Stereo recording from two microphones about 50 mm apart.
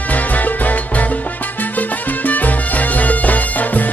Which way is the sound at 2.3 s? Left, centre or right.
Left.